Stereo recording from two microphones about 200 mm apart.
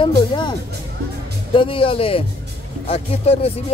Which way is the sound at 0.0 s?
25° left (ahead or behind).